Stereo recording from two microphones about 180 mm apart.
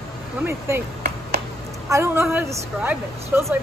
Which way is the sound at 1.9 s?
15° right (ahead or behind).